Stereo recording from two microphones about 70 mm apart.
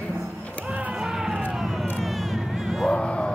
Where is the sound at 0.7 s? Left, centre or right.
Right.